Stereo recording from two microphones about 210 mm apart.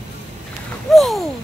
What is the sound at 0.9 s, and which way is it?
Speech, centre (ahead or behind).